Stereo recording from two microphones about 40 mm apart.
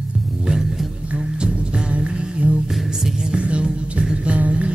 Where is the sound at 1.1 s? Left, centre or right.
Right.